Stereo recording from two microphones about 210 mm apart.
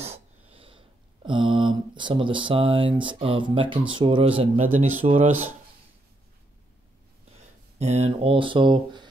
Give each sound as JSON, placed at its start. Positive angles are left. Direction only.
{"t": 0.0, "sound": "a sound", "side_deg": -30}
{"t": 3.0, "sound": "speech", "side_deg": -25}
{"t": 7.8, "sound": "speech", "side_deg": -30}